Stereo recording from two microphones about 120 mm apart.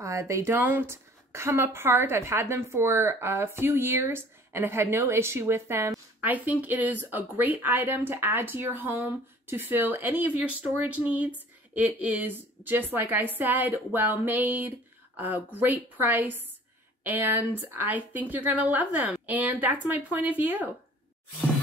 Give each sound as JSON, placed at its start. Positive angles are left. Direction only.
{"t": 0.0, "sound": "a woman's voice", "side_deg": -25}